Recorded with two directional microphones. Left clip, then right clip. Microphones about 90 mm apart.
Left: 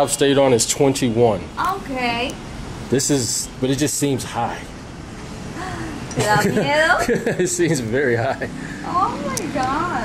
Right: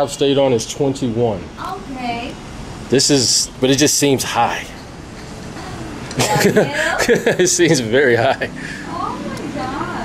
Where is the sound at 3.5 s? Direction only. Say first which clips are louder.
Right 5 dB; 20° right (ahead or behind).